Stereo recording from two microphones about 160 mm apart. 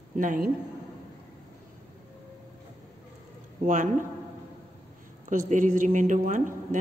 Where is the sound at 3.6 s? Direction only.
50° right (ahead or behind).